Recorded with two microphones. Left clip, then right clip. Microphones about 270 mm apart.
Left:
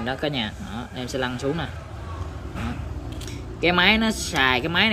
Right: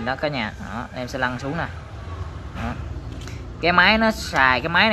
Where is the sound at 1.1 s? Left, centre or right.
Centre.